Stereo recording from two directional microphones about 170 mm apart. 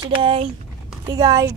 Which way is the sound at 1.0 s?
20° right (ahead or behind).